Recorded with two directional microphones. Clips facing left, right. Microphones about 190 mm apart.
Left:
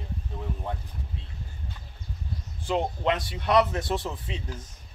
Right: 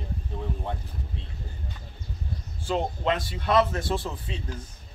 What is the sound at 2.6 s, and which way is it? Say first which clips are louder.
Speech: even; 15° left (ahead or behind).